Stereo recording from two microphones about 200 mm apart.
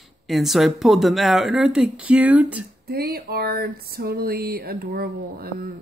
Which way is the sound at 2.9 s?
50° right (ahead or behind).